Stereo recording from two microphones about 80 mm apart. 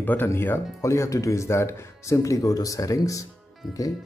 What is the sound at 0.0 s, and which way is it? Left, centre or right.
Speech, left.